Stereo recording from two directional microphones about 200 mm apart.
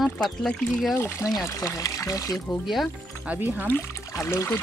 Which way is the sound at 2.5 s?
Centre (ahead or behind).